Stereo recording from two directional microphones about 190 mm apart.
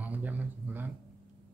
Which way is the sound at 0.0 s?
10° right (ahead or behind).